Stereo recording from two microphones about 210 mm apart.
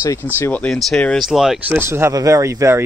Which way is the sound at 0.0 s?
10° left (ahead or behind).